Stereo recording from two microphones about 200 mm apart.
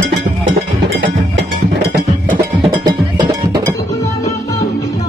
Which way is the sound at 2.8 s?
20° right (ahead or behind).